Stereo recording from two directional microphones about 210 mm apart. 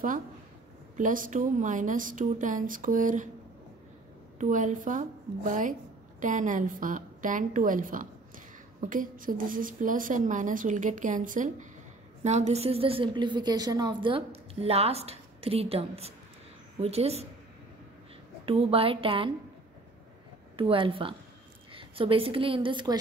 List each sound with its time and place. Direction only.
0.9 s a woman's voice: 40° right (ahead or behind)
4.4 s a woman's voice: 35° right (ahead or behind)
18.4 s a woman's voice: 25° right (ahead or behind)
20.5 s a woman's voice: 25° right (ahead or behind)